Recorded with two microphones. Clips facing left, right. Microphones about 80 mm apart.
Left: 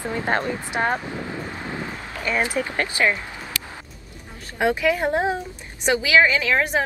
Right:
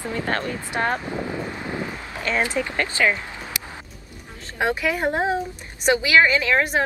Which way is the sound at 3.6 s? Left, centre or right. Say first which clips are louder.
Left 1 dB; centre.